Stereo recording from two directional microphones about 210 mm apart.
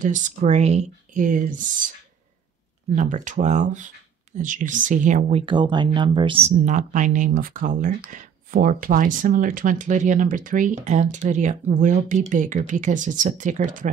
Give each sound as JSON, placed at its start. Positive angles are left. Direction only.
{"t": 0.0, "sound": "speech", "side_deg": -40}
{"t": 3.0, "sound": "speech", "side_deg": -35}
{"t": 5.4, "sound": "speech", "side_deg": -20}